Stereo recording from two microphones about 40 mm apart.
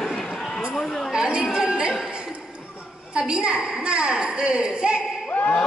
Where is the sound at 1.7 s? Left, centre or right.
Right.